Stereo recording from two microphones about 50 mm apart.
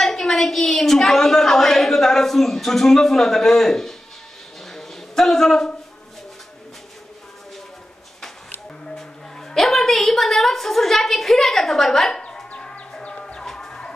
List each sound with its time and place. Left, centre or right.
0.0 s a woman's voice: centre
4.6 s a sound: centre
8.9 s a woman's voice: centre
12.2 s chicken: centre
12.5 s music: centre